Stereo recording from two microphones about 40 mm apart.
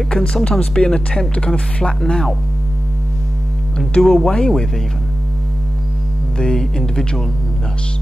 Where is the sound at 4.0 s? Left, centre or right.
Centre.